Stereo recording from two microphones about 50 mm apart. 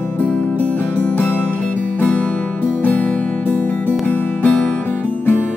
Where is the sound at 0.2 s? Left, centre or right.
Left.